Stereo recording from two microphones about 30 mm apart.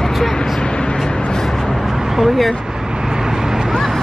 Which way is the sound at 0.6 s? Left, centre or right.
Left.